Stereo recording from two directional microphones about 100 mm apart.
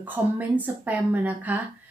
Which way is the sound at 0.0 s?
15° right (ahead or behind).